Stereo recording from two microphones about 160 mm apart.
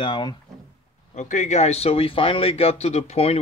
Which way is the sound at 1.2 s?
50° left (ahead or behind).